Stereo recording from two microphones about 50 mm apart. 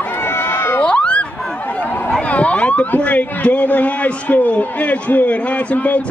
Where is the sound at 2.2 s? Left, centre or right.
Left.